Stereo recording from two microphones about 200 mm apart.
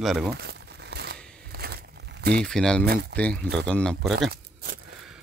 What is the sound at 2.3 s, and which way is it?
Speech, 5° left (ahead or behind).